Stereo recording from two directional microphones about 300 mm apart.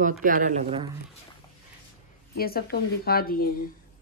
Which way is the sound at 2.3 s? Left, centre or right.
Left.